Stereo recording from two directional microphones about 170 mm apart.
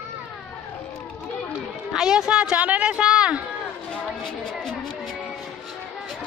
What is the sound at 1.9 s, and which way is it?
Speech, 5° right (ahead or behind).